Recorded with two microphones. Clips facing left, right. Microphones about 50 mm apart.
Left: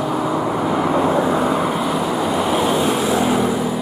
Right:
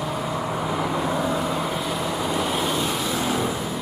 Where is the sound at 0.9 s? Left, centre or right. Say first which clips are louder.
Left 7 dB; left.